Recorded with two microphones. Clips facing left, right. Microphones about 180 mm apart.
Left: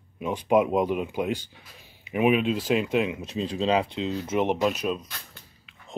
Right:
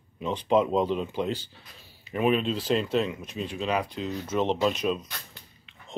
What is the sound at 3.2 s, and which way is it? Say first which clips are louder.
Speech: left 5 dB; 30° left (ahead or behind).